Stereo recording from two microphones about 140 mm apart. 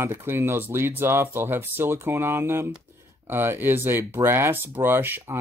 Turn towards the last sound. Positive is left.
turn(degrees=-15)  # may be behind; listen again after turning